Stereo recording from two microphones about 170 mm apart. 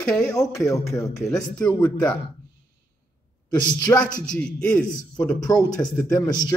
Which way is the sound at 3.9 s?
5° left (ahead or behind).